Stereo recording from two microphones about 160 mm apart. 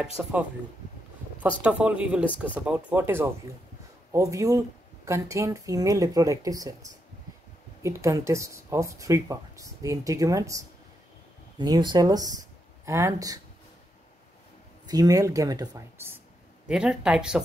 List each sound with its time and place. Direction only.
0.2 s speech: 5° right (ahead or behind)
1.6 s speech: 5° right (ahead or behind)
14.9 s speech: 25° right (ahead or behind)
16.6 s speech: 5° right (ahead or behind)